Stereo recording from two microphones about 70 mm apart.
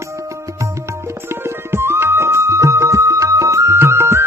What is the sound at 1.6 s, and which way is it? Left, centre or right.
Music, right.